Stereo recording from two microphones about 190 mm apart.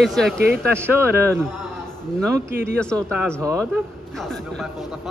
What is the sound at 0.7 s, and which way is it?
Speech, 10° right (ahead or behind).